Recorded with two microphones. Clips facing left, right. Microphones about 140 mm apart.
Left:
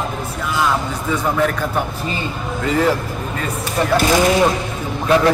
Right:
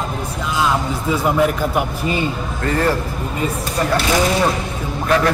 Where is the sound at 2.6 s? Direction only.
10° left (ahead or behind).